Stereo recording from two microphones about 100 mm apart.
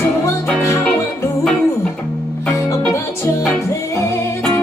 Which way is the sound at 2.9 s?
30° left (ahead or behind).